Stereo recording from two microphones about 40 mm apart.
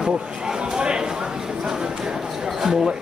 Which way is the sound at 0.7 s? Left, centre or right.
Right.